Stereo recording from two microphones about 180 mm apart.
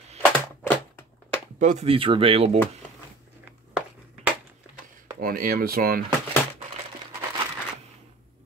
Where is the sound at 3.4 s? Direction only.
10° right (ahead or behind).